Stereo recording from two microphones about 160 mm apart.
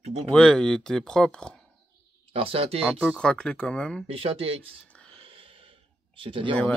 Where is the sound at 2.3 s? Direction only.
35° right (ahead or behind).